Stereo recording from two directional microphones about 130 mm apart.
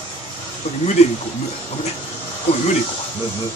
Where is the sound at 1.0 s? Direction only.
55° left (ahead or behind).